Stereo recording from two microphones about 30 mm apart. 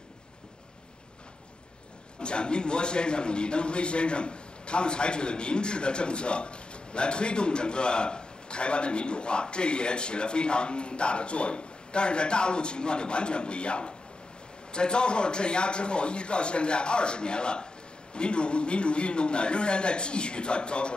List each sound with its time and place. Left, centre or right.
2.1 s a man's voice: left